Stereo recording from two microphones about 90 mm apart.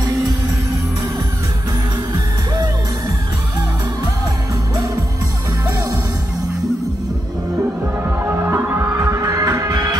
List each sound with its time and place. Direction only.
2.1 s music: 45° right (ahead or behind)
8.3 s music: 25° right (ahead or behind)
9.0 s music: 35° right (ahead or behind)